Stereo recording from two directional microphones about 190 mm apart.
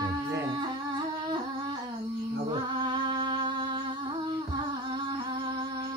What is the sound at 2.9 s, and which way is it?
Music, 25° right (ahead or behind).